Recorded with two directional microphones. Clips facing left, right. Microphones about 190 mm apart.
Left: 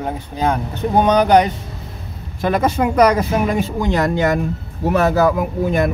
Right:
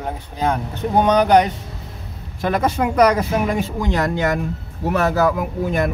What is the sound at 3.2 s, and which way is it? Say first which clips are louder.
Speech: left 2 dB; 30° left (ahead or behind).